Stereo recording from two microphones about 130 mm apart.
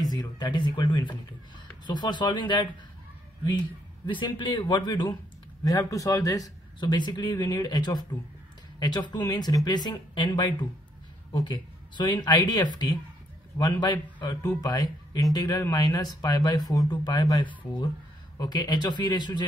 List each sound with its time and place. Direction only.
0.0 s a man's voice: 30° left (ahead or behind)